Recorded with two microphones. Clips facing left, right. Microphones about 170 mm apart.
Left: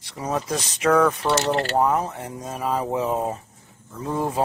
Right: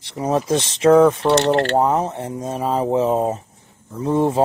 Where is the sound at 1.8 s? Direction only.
25° right (ahead or behind).